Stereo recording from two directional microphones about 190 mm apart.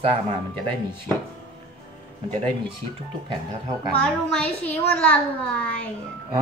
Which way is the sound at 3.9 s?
5° left (ahead or behind).